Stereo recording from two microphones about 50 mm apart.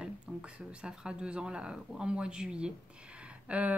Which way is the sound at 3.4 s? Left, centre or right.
Right.